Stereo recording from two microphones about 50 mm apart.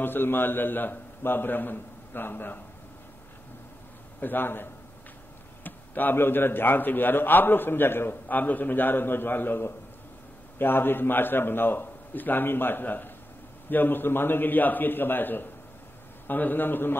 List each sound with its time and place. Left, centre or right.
0.0 s a man's voice: left
4.2 s a man's voice: left
8.3 s a man's voice: left